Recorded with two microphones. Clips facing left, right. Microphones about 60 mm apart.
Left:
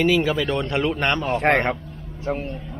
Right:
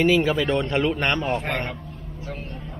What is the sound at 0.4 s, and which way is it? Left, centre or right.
Speech, centre.